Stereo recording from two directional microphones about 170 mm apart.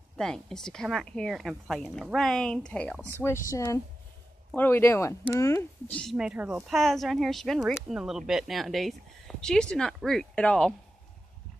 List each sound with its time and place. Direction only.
0.2 s speech: 5° left (ahead or behind)
3.4 s speech: 20° left (ahead or behind); by 6.8 s 10° right (ahead or behind)
6.8 s speech: centre (ahead or behind)